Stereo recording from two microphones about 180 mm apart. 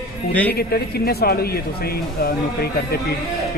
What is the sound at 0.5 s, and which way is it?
Speech, 60° left (ahead or behind).